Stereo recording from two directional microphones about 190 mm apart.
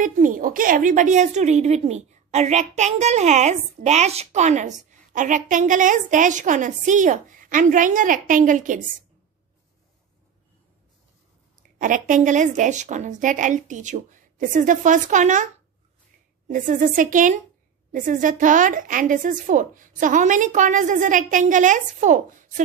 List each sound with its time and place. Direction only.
0.0 s a woman's voice: 45° right (ahead or behind)
11.8 s a woman's voice: 45° right (ahead or behind)
16.4 s a woman's voice: 40° right (ahead or behind)